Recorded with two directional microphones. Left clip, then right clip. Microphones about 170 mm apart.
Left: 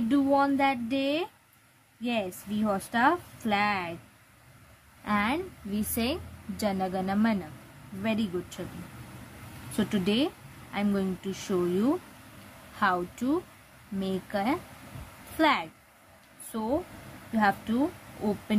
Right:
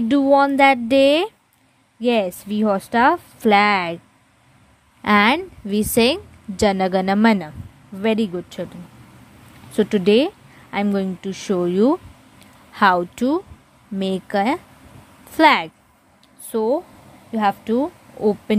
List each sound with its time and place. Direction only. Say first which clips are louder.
0.1 s a woman's voice: right 10 dB; 45° right (ahead or behind)
5.0 s a woman's voice: right 13 dB; 60° right (ahead or behind)
9.8 s a woman's voice: right 13 dB; 40° right (ahead or behind)
18.5 s bee: right 6 dB; 50° right (ahead or behind)